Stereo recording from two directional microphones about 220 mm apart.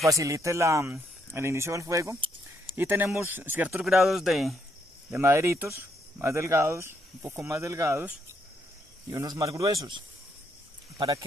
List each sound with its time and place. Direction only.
0.0 s speech: 15° right (ahead or behind)
2.7 s speech: 10° right (ahead or behind)
5.1 s speech: 10° right (ahead or behind)
9.1 s speech: 15° right (ahead or behind)